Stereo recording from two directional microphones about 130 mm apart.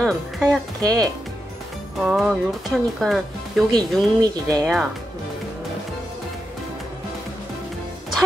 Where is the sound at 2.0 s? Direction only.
5° right (ahead or behind).